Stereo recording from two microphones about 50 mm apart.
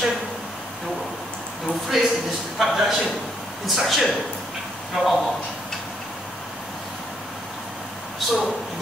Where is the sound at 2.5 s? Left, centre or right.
Centre.